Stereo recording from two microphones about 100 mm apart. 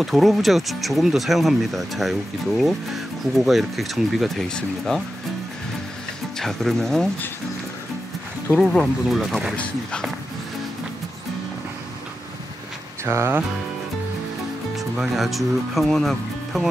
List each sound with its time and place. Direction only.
0.0 s speech: centre (ahead or behind)
6.3 s speech: 5° left (ahead or behind)
8.5 s speech: centre (ahead or behind)
9.6 s speech: 10° left (ahead or behind)
13.0 s music: 25° right (ahead or behind)
14.8 s speech: centre (ahead or behind)